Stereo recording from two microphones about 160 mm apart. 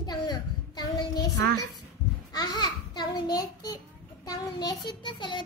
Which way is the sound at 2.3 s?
25° left (ahead or behind).